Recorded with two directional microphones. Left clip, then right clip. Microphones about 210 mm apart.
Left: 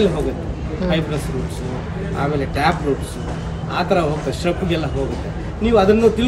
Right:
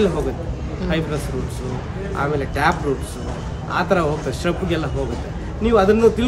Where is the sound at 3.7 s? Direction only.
Centre (ahead or behind).